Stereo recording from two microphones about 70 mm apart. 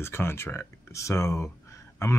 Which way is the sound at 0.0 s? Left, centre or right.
Left.